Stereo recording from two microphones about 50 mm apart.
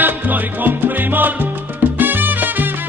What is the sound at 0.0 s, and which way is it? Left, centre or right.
Salsa music, right.